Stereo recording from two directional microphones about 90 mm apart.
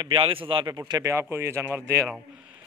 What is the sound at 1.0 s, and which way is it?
Speech, 30° right (ahead or behind).